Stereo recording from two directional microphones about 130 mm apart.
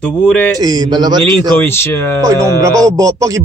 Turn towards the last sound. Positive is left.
turn(degrees=-25)  # may be behind; listen again after turning